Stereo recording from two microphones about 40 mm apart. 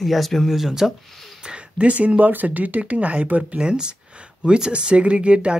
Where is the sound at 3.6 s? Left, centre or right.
Right.